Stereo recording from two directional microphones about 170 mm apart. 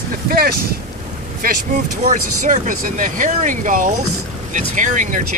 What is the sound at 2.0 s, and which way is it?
Speech, 45° right (ahead or behind).